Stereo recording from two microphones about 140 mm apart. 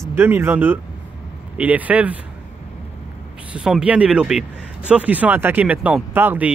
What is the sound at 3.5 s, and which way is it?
Speech, 5° right (ahead or behind).